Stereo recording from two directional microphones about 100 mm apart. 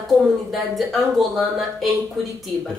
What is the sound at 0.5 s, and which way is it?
Speech, centre (ahead or behind).